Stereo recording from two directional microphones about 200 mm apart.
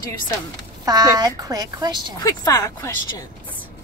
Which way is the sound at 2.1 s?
15° left (ahead or behind).